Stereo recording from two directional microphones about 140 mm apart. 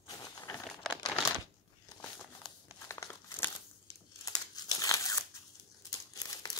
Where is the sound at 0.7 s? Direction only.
Centre (ahead or behind).